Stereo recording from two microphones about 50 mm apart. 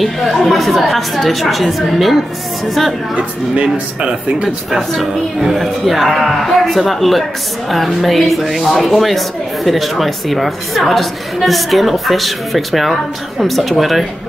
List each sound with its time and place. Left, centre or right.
0.0 s a woman's voice: centre
3.7 s speech: centre
4.6 s a woman's voice: centre